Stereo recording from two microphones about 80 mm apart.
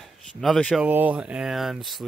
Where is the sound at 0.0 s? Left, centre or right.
Centre.